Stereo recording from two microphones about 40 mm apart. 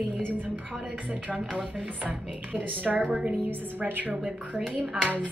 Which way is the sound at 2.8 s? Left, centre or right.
Right.